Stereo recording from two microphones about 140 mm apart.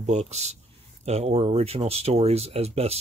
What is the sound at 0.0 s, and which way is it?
Speech, 55° right (ahead or behind).